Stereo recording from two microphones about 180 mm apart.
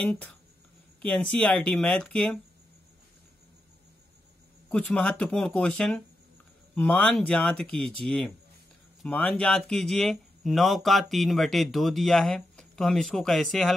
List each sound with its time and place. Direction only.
0.0 s speech: 5° left (ahead or behind)
4.6 s speech: 5° left (ahead or behind)